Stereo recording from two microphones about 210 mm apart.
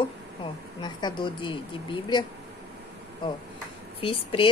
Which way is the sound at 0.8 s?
20° left (ahead or behind).